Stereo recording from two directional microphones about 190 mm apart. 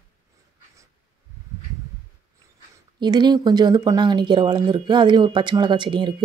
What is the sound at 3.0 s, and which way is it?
Speech, 25° right (ahead or behind).